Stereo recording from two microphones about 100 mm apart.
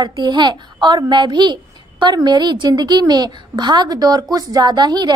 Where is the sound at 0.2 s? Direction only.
50° right (ahead or behind).